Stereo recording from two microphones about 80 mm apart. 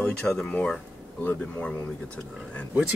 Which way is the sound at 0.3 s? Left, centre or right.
Centre.